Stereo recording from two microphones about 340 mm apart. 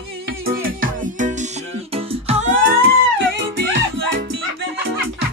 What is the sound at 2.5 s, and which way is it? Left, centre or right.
Music, right.